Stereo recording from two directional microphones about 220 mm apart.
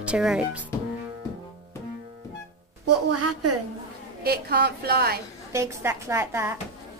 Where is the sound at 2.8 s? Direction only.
90° right.